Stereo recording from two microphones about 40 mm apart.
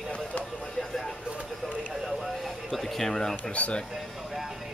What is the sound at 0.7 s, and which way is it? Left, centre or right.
Vehicle, centre.